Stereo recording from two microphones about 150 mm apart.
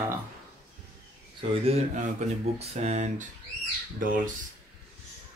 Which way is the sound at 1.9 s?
50° right (ahead or behind).